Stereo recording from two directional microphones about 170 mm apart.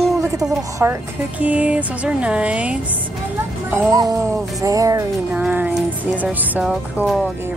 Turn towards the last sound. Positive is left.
turn(degrees=-5)  # may be behind; listen again after turning